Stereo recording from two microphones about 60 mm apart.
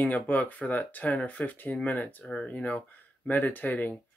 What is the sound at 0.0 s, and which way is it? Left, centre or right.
Speech, left.